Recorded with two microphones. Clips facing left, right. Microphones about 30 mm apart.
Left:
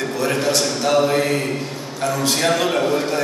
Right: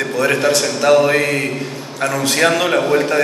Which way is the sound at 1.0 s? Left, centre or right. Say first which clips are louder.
Right 3 dB; right.